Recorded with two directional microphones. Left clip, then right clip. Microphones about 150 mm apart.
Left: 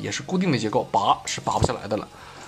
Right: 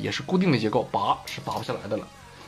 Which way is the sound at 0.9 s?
20° left (ahead or behind).